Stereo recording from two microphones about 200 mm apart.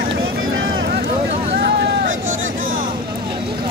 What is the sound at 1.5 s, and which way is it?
Vehicle, 55° right (ahead or behind).